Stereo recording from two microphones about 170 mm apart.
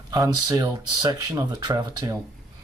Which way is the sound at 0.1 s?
20° right (ahead or behind).